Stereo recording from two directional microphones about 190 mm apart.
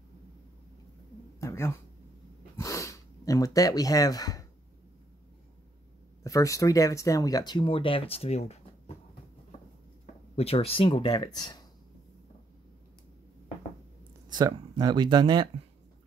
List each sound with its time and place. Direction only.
1.4 s a sound: 15° left (ahead or behind)
2.5 s sniff: 15° left (ahead or behind)
6.2 s speech: 15° left (ahead or behind); by 8.9 s 35° left (ahead or behind)
10.3 s speech: 30° left (ahead or behind)
14.3 s speech: 20° right (ahead or behind)